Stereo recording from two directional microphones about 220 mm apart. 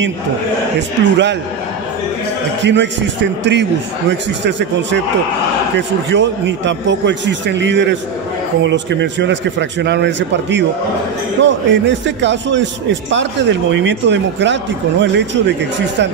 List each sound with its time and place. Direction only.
0.7 s speech: 55° right (ahead or behind)
2.6 s a man's voice: 55° right (ahead or behind)